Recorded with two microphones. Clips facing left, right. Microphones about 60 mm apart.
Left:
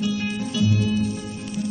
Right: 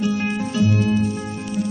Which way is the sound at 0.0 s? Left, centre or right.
Right.